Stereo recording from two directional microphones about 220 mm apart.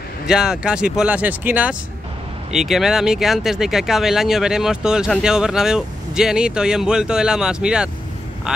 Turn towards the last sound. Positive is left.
turn(degrees=-5)  # may be behind; listen again after turning